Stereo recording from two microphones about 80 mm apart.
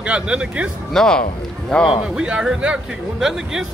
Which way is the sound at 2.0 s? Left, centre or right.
Centre.